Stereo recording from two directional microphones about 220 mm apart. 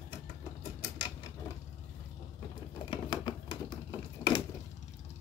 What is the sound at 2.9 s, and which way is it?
Typewriter, 20° left (ahead or behind).